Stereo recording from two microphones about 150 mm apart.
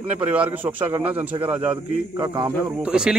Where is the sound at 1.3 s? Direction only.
25° right (ahead or behind).